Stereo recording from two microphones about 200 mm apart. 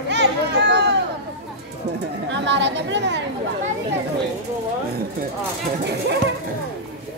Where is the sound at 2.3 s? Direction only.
60° right (ahead or behind).